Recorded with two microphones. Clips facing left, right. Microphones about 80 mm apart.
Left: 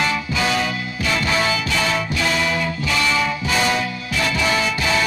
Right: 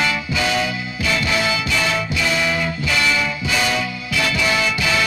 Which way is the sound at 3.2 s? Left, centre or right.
Left.